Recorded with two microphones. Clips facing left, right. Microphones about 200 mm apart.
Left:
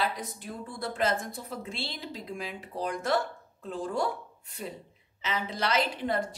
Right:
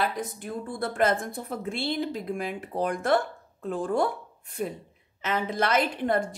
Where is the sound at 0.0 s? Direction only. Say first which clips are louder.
Right 3 dB; 50° right (ahead or behind).